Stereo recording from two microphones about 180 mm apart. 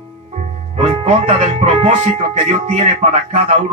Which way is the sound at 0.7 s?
35° right (ahead or behind).